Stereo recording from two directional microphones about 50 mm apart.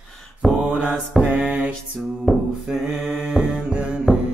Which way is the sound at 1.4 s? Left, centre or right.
Right.